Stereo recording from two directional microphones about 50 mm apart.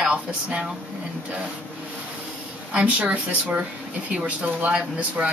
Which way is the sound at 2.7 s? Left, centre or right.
Centre.